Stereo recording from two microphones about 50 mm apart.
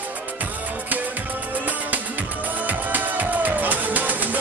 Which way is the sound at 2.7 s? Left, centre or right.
Right.